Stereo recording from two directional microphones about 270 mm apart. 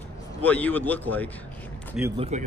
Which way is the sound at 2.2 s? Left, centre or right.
Right.